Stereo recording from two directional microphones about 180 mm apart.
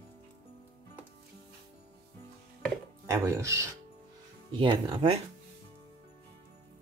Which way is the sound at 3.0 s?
15° right (ahead or behind).